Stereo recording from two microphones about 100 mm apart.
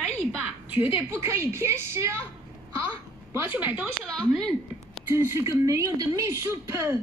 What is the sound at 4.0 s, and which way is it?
Speech, 5° left (ahead or behind).